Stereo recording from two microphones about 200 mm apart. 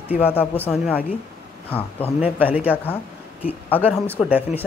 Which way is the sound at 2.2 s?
10° right (ahead or behind).